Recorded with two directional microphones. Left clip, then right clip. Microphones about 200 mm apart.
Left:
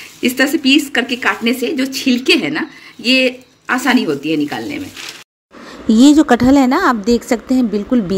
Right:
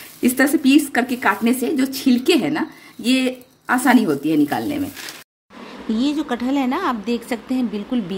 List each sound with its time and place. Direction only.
0.2 s speech: 25° right (ahead or behind)
5.9 s speech: 40° left (ahead or behind); by 8.0 s 25° left (ahead or behind)